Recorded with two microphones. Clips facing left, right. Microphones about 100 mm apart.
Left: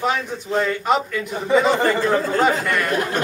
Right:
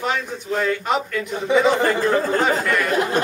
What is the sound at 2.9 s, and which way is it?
Speech, 25° right (ahead or behind).